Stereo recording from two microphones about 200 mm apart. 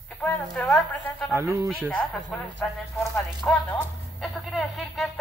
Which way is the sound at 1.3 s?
15° right (ahead or behind).